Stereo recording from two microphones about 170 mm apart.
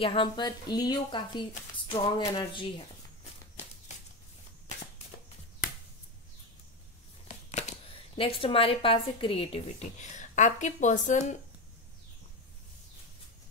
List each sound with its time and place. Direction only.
0.0 s speech: 30° left (ahead or behind)
8.2 s a woman's voice: 35° left (ahead or behind)